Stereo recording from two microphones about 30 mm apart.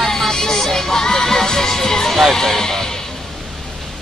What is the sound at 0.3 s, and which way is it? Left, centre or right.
Music, left.